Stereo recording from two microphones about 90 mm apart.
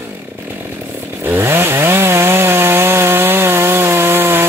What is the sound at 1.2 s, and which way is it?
Chainsaw, 25° right (ahead or behind).